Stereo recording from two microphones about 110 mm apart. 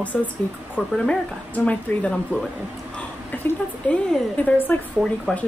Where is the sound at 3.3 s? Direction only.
15° left (ahead or behind).